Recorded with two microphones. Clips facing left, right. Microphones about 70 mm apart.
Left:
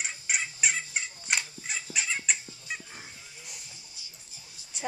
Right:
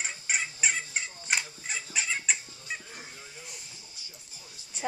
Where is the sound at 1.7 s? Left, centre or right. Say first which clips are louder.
Even; centre.